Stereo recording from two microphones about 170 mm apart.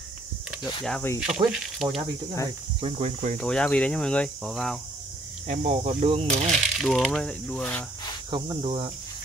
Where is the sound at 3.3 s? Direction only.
5° left (ahead or behind).